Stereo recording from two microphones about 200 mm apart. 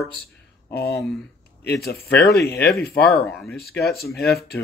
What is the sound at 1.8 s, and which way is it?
Speech, 55° left (ahead or behind).